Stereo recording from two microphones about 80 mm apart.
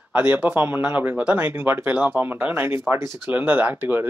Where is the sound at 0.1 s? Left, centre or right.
Centre.